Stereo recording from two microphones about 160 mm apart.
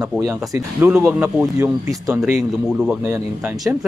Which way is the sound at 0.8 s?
5° right (ahead or behind).